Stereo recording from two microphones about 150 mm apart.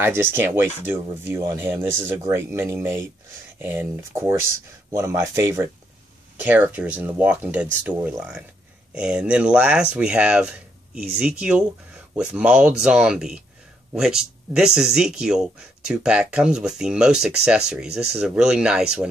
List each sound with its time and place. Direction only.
0.0 s speech: 15° right (ahead or behind)